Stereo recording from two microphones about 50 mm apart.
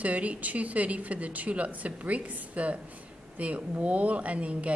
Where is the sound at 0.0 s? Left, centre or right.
Right.